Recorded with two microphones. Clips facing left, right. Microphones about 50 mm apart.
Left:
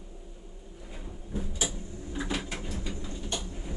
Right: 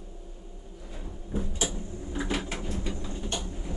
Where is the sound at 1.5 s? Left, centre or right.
Right.